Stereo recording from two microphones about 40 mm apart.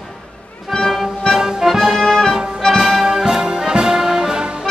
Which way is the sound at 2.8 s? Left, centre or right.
Centre.